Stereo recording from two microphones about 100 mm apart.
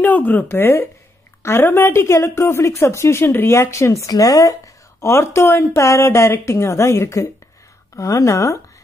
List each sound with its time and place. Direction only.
0.0 s a woman's voice: 15° left (ahead or behind)